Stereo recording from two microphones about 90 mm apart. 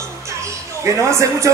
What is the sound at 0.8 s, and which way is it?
Speech, 35° right (ahead or behind).